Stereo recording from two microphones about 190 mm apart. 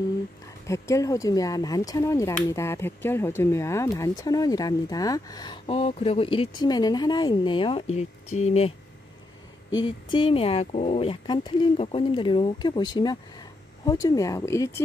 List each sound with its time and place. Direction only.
0.7 s speech: 15° left (ahead or behind); by 8.7 s 35° left (ahead or behind)
9.8 s speech: 25° left (ahead or behind)